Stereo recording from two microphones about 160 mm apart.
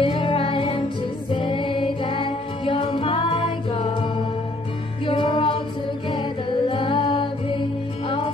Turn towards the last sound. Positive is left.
turn(degrees=30)  # may be behind; listen again after turning